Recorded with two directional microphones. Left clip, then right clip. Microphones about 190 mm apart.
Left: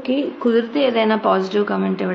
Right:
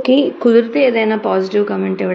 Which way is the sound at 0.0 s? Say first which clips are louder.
Right 8 dB; 40° right (ahead or behind).